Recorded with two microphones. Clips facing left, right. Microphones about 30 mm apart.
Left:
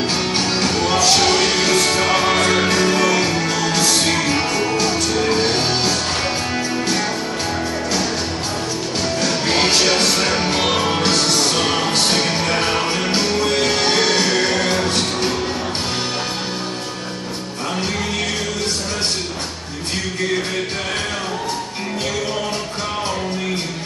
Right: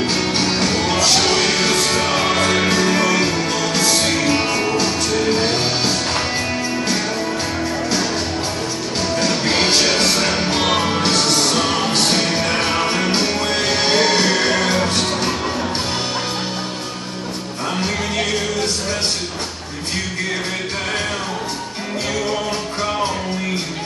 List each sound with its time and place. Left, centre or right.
0.0 s music: centre
1.5 s music: centre
2.2 s music: centre
9.2 s music: centre
9.8 s music: centre
11.4 s music: centre
11.8 s music: centre